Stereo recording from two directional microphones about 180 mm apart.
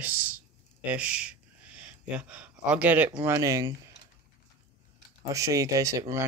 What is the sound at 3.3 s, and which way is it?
Speech, 20° right (ahead or behind).